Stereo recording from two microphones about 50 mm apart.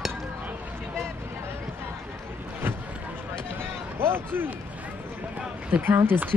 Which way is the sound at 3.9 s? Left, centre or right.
Right.